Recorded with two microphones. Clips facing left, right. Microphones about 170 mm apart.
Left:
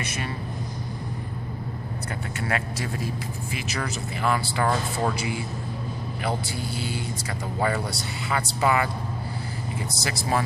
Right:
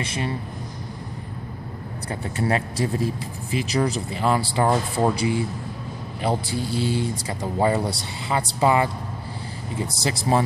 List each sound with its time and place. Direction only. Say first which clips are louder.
0.0 s speech: right 4 dB; 25° right (ahead or behind)
2.3 s speech: right 6 dB; 30° right (ahead or behind)